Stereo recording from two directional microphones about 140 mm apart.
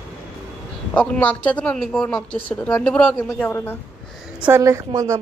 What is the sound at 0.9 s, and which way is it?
A man's voice, 10° left (ahead or behind).